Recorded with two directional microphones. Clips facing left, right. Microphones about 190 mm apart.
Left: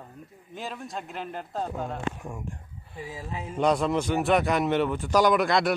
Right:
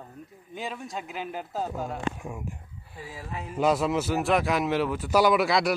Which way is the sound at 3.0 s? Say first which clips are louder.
Left 2 dB; 20° left (ahead or behind).